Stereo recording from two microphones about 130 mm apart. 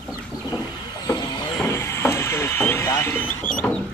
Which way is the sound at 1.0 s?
30° left (ahead or behind).